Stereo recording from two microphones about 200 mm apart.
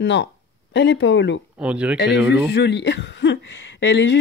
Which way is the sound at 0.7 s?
60° left (ahead or behind).